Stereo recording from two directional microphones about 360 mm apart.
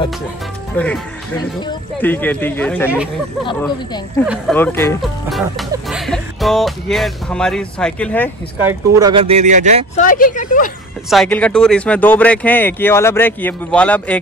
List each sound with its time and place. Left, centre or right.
0.7 s speech: centre
3.4 s speech: centre
8.6 s speech: centre
9.9 s speech: left
11.1 s speech: centre